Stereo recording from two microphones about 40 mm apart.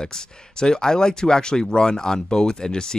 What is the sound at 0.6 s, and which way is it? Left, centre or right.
Speech, centre.